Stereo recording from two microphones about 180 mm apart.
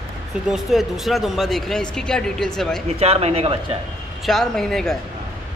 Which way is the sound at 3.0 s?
35° right (ahead or behind).